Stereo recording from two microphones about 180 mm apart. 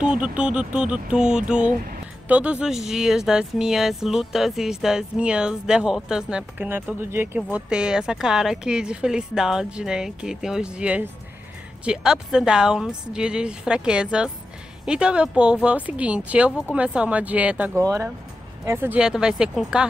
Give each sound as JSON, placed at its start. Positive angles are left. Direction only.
{"t": 0.0, "sound": "speech", "side_deg": -5}